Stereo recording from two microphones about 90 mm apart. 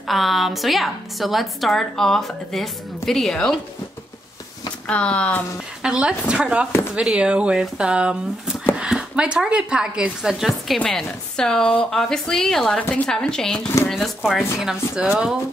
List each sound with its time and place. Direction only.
0.0 s a woman's voice: centre (ahead or behind)
4.8 s speech: 15° left (ahead or behind)
5.8 s a woman's voice: 10° right (ahead or behind)
12.7 s a woman's voice: 15° left (ahead or behind); by 15.3 s 5° right (ahead or behind)